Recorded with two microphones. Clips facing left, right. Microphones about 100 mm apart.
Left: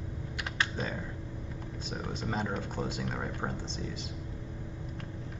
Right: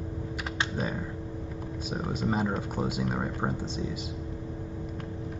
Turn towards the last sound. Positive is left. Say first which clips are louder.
# right 5 dB
turn(degrees=-15)  # may be behind; listen again after turning